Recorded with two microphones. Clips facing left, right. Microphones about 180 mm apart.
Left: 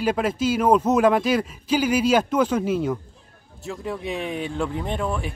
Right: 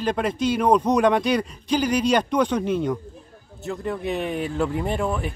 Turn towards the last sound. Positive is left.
turn(degrees=-5)  # may be behind; listen again after turning